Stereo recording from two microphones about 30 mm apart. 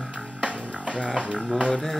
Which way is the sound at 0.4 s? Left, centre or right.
Right.